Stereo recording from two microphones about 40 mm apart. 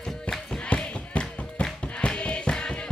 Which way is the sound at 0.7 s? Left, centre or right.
Left.